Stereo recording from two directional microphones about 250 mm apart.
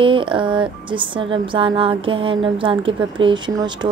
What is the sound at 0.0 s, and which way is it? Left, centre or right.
A woman's voice, centre.